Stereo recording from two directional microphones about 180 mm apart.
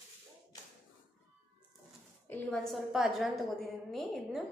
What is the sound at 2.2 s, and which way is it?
A woman's voice, 5° left (ahead or behind).